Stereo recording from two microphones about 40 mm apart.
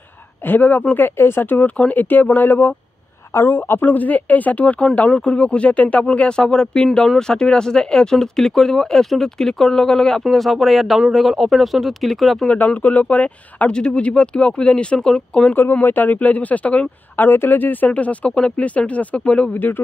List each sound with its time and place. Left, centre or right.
0.5 s speech: left
1.0 s speech: left
1.8 s speech: left
3.3 s speech: left
3.9 s speech: left
5.2 s speech: left
6.0 s speech: left; by 12.4 s centre
12.5 s speech: left
13.7 s speech: left
15.7 s speech: left
17.2 s speech: left
17.9 s speech: left
19.5 s speech: left